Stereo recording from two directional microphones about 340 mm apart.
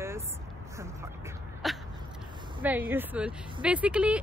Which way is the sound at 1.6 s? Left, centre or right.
Centre.